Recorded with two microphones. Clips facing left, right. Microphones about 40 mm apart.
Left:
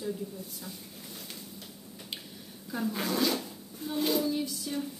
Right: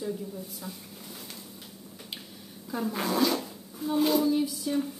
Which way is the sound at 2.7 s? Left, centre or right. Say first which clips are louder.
Right 2 dB; centre.